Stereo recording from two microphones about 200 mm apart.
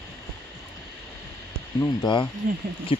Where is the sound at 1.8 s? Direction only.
20° left (ahead or behind).